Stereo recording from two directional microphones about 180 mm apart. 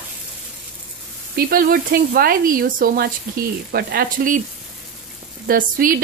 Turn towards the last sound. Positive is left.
turn(degrees=-50)  # may be behind; listen again after turning